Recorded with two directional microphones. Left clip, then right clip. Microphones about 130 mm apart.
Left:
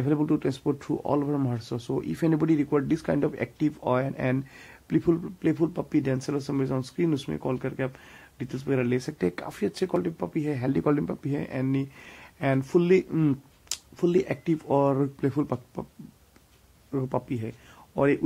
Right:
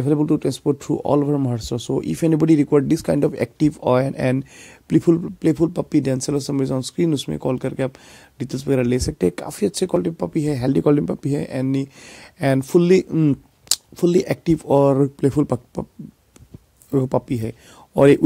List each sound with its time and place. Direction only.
0.0 s speech: 25° right (ahead or behind); by 9.0 s 50° right (ahead or behind)
9.0 s speech: 30° right (ahead or behind)
10.7 s speech: 30° right (ahead or behind)
13.1 s speech: 25° right (ahead or behind)
13.7 s speech: 45° right (ahead or behind)
15.1 s speech: 35° right (ahead or behind)
16.9 s speech: 45° right (ahead or behind)